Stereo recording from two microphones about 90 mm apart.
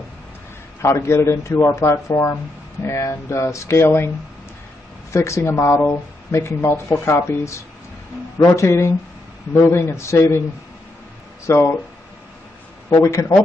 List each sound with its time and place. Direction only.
0.8 s speech: 30° left (ahead or behind)
5.1 s speech: 35° left (ahead or behind)
11.4 s speech: 30° left (ahead or behind)
12.9 s speech: 35° left (ahead or behind)